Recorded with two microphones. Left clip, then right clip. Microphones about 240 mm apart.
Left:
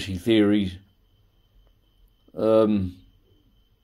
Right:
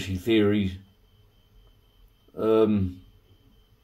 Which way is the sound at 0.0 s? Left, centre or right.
Left.